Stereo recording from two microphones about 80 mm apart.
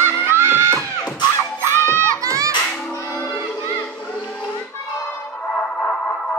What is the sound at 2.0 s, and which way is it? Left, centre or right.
Children shouting, right.